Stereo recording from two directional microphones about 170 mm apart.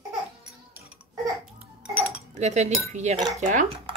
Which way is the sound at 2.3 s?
45° right (ahead or behind).